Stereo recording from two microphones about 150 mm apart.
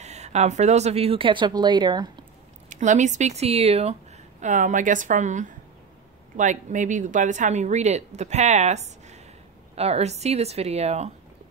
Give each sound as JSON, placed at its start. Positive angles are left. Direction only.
{"t": 0.0, "sound": "speech", "side_deg": -50}
{"t": 2.7, "sound": "speech", "side_deg": -55}
{"t": 4.4, "sound": "a woman's voice", "side_deg": -55}